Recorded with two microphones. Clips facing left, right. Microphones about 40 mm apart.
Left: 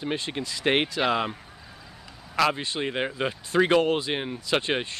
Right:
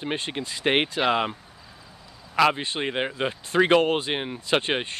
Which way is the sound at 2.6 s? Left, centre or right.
Right.